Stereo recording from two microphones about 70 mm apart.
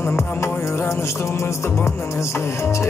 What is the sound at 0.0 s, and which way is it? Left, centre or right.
Music, left.